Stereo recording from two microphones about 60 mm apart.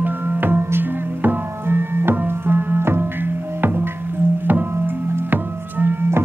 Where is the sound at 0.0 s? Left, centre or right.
Right.